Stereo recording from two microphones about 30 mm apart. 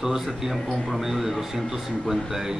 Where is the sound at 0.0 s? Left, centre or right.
Centre.